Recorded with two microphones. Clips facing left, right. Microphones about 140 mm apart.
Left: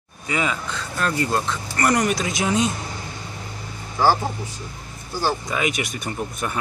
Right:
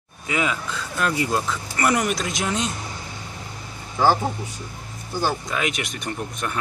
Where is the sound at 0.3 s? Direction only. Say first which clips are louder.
Even; 5° right (ahead or behind).